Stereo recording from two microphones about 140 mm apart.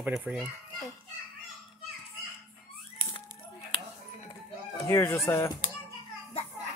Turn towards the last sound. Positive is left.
turn(degrees=20)  # may be behind; listen again after turning